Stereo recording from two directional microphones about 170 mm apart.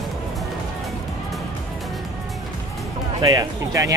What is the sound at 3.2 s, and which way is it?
Speech, 20° right (ahead or behind).